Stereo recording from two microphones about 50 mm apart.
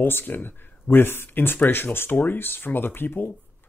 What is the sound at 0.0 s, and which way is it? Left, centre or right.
Speech, left.